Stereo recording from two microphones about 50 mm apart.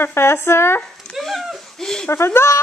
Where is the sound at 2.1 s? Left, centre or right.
Left.